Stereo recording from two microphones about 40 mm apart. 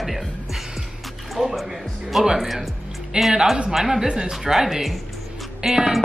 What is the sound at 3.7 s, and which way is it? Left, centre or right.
A man's voice, centre.